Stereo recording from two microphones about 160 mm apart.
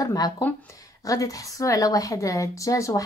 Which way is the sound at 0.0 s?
25° left (ahead or behind).